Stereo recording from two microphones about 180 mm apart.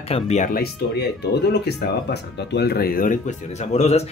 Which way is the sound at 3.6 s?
35° left (ahead or behind).